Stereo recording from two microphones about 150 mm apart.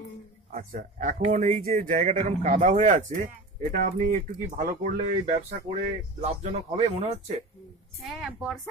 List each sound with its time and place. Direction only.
0.5 s speech: 60° right (ahead or behind)
6.2 s speech: 50° right (ahead or behind)
8.0 s a woman's voice: 5° right (ahead or behind)